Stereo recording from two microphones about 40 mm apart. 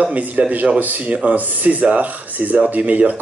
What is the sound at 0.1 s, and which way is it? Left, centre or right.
Speech, right.